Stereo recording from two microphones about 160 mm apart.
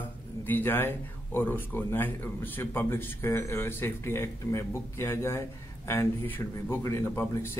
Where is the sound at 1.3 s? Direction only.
10° left (ahead or behind).